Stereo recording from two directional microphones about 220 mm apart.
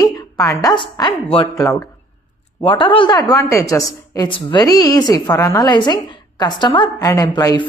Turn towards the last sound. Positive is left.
turn(degrees=20)  # may be behind; listen again after turning